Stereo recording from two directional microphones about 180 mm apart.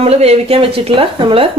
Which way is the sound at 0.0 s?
35° right (ahead or behind).